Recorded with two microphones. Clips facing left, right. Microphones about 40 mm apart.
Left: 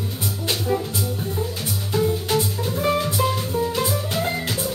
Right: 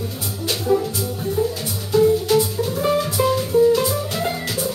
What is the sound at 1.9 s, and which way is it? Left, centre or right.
Music, centre.